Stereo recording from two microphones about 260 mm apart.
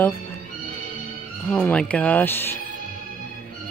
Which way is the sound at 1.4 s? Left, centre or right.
Centre.